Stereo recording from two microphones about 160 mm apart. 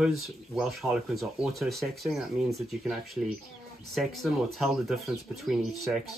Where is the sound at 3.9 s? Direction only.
Centre (ahead or behind).